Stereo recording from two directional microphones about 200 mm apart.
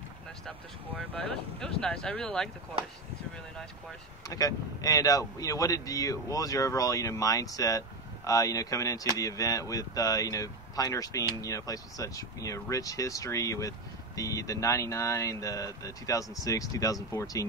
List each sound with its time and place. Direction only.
0.5 s speech: 5° left (ahead or behind)
4.3 s speech: 15° left (ahead or behind)